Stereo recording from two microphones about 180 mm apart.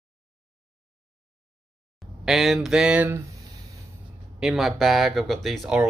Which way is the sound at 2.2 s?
Centre (ahead or behind).